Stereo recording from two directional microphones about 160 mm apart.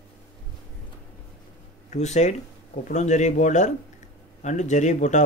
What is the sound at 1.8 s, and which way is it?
A man's voice, 45° left (ahead or behind).